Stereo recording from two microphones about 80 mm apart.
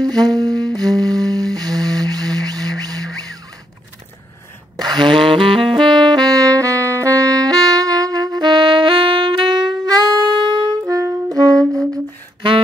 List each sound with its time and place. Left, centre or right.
0.0 s music: right
4.7 s saxophone: right